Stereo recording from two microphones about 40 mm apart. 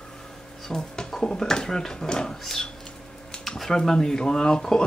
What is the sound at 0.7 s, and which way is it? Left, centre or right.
Speech, centre.